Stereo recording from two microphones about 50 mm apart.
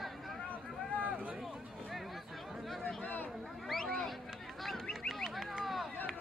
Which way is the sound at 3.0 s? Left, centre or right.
Left.